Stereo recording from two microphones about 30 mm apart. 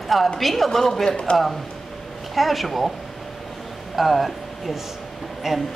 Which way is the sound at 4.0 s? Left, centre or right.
Centre.